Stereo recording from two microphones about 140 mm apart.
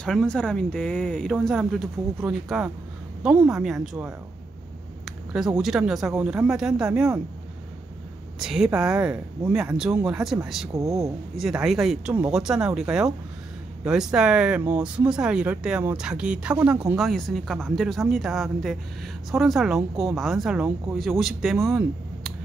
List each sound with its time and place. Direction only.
0.0 s speech: 5° left (ahead or behind)
5.6 s speech: 5° right (ahead or behind)
8.4 s speech: 5° right (ahead or behind)
10.7 s speech: 25° right (ahead or behind)
11.3 s speech: centre (ahead or behind)